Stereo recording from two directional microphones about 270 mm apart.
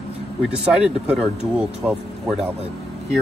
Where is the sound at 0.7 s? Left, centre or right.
Centre.